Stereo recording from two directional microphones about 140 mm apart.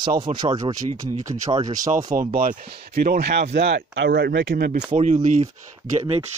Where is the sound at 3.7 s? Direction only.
90° right.